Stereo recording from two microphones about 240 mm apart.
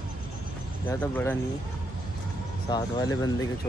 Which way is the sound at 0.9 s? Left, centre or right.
Centre.